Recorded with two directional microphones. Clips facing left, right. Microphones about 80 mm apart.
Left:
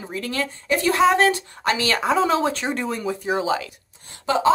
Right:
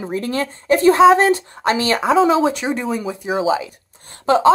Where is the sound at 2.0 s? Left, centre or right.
Centre.